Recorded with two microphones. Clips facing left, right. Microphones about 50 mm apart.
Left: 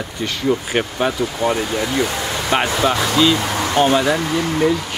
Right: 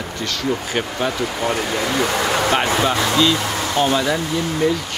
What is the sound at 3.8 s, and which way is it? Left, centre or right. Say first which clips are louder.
Speech: left 3 dB; left.